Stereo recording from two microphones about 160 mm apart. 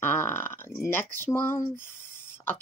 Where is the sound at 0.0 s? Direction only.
15° left (ahead or behind).